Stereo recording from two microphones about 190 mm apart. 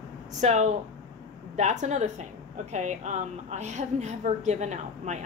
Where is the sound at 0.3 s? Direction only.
35° right (ahead or behind).